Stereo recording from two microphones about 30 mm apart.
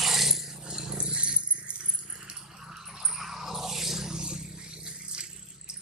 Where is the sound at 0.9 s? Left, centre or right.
Right.